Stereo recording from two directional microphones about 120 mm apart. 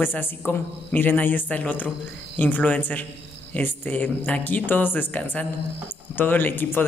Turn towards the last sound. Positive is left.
turn(degrees=15)  # may be behind; listen again after turning